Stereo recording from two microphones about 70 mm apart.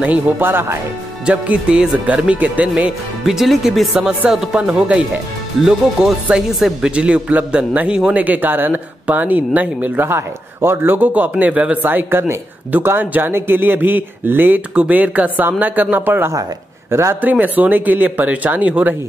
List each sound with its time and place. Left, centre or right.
0.4 s speech: right
1.2 s speech: centre
3.3 s speech: centre
3.9 s speech: centre
4.3 s speech: centre
5.7 s speech: centre
10.0 s speech: right
16.9 s speech: right
17.2 s speech: right